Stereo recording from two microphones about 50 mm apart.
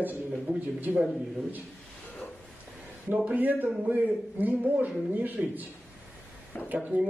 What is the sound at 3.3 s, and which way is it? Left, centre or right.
A man's voice, right.